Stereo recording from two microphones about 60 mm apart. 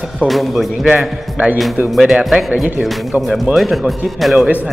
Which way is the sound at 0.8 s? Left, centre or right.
Centre.